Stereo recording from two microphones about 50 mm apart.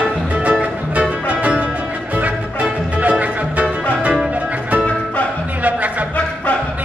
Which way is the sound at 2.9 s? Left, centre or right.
Right.